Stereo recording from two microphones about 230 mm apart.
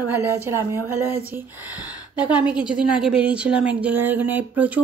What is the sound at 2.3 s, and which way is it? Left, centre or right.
Speech, centre.